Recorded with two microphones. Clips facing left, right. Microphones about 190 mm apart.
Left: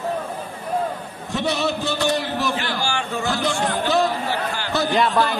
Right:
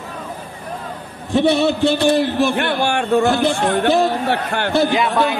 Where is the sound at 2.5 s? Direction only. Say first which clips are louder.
Right 6 dB; 60° right (ahead or behind).